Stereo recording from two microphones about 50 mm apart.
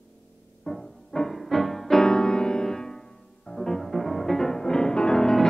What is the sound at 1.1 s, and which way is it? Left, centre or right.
Music, centre.